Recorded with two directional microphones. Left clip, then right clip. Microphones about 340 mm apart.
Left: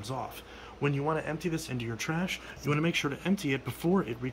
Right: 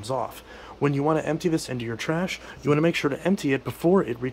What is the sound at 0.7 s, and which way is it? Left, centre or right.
Speech, centre.